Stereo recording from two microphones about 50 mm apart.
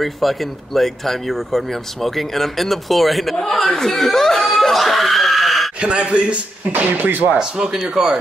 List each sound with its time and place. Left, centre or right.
0.0 s speech: centre
5.8 s a man's voice: right
6.7 s speech: right
7.3 s speech: centre